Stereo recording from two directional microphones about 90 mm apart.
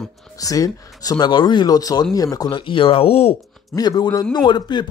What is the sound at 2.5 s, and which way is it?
Speech, 65° left (ahead or behind).